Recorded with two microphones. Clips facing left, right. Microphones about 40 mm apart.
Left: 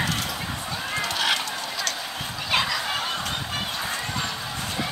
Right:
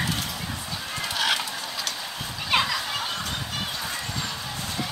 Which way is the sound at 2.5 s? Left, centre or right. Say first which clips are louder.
Right 1 dB; centre.